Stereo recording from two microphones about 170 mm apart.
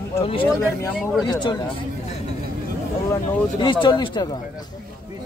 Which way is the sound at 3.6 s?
30° left (ahead or behind).